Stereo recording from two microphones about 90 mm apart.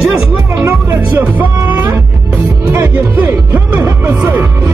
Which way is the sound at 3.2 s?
20° right (ahead or behind).